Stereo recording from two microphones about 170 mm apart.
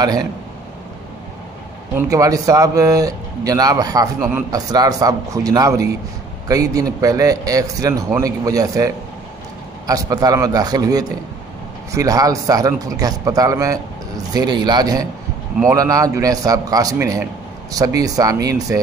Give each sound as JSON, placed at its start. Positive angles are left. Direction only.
{"t": 0.0, "sound": "speech", "side_deg": -25}
{"t": 2.0, "sound": "speech", "side_deg": -20}